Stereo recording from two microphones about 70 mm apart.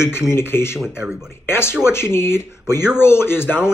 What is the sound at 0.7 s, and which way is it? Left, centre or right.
Speech, centre.